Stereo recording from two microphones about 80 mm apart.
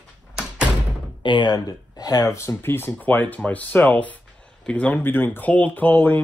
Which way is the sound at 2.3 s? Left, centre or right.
Left.